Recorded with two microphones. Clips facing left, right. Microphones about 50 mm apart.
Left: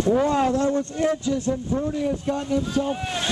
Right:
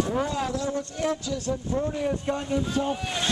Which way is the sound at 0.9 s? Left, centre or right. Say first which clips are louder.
Left 5 dB; left.